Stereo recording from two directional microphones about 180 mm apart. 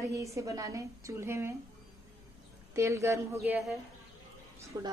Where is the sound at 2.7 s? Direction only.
15° right (ahead or behind).